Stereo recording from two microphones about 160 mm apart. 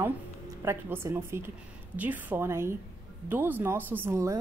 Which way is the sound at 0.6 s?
15° right (ahead or behind).